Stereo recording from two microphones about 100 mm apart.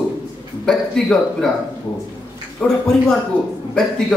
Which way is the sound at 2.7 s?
5° left (ahead or behind).